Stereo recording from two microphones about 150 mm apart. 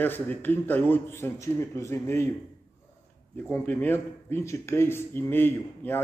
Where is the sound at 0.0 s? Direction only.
10° left (ahead or behind).